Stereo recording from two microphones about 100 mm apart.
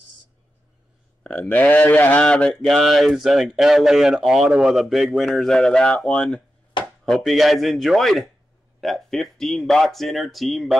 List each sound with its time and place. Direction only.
1.4 s speech: 15° left (ahead or behind); by 10.8 s centre (ahead or behind)